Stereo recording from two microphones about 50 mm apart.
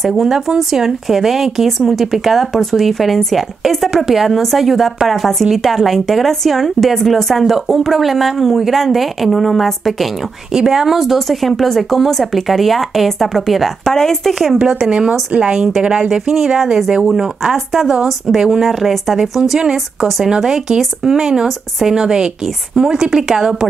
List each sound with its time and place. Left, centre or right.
0.0 s speech: centre
10.5 s speech: centre
14.6 s a woman's voice: centre